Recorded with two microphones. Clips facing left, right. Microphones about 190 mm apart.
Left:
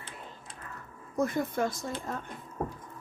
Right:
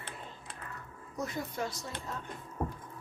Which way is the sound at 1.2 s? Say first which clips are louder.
Left 7 dB; 50° left (ahead or behind).